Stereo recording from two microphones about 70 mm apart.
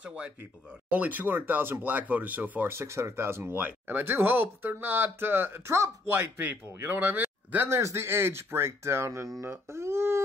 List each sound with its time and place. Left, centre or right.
0.8 s speech: right
2.7 s speech: right
7.6 s speech: right